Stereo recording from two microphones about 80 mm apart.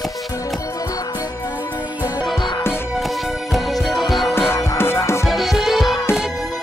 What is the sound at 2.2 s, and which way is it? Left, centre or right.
Music, left.